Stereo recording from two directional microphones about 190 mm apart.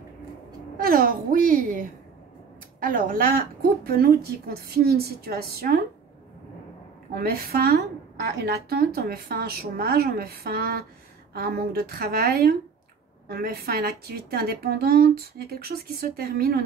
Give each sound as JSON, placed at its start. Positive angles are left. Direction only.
{"t": 0.7, "sound": "a sound", "side_deg": -50}
{"t": 2.8, "sound": "a woman's voice", "side_deg": -45}
{"t": 7.2, "sound": "a woman's voice", "side_deg": -50}